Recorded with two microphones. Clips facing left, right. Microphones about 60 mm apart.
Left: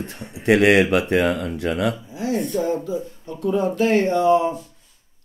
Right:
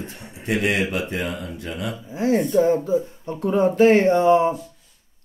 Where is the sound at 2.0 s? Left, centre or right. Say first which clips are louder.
Right 4 dB; right.